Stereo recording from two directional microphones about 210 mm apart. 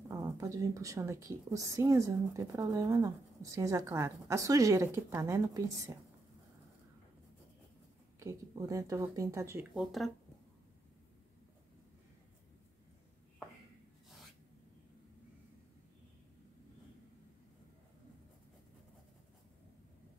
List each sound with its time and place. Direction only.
0.1 s a woman's voice: 15° right (ahead or behind)
8.2 s a woman's voice: 15° right (ahead or behind)
9.8 s speech: centre (ahead or behind)